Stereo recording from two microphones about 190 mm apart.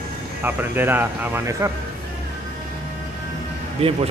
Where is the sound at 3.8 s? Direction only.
30° right (ahead or behind).